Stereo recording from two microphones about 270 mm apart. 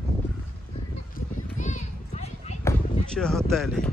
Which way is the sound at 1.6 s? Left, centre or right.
Left.